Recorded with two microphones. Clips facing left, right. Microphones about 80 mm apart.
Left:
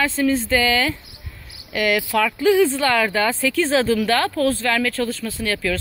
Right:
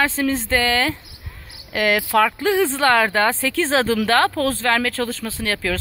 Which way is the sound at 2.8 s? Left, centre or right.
Right.